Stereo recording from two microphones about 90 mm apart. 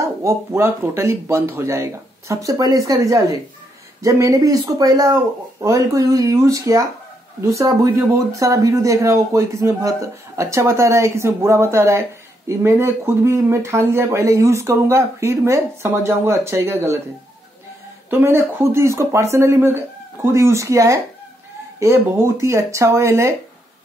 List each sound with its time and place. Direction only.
0.0 s speech: 35° right (ahead or behind)
18.1 s speech: 25° right (ahead or behind)